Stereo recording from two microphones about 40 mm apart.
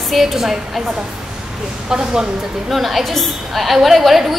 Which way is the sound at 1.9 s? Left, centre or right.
Centre.